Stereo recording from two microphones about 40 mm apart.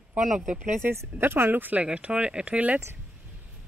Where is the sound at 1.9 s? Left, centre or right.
Right.